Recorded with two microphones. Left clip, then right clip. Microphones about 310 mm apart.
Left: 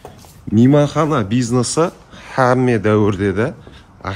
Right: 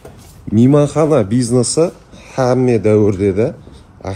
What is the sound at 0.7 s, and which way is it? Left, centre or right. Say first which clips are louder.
A man's voice: right 3 dB; centre.